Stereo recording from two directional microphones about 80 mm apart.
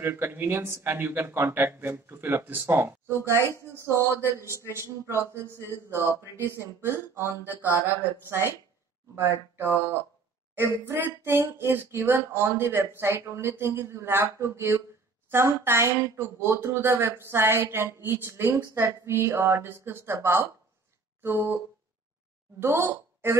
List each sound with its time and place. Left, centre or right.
0.0 s speech: right
4.5 s a man's voice: left
4.7 s speech: right
21.2 s a sound: right
22.6 s speech: right